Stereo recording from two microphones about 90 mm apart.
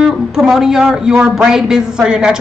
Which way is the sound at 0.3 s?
5° right (ahead or behind).